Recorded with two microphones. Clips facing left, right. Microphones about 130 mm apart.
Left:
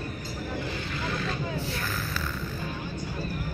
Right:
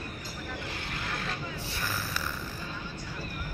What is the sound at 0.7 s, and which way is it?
Vehicle, 55° right (ahead or behind).